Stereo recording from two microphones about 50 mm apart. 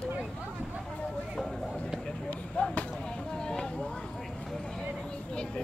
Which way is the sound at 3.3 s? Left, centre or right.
Centre.